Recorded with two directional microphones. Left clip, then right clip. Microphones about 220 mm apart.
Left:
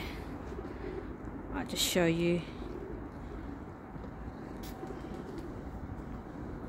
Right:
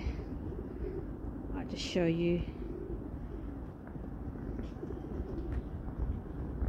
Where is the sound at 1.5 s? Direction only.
15° left (ahead or behind).